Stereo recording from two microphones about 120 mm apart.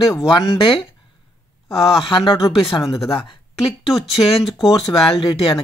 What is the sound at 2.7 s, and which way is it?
Speech, 25° left (ahead or behind).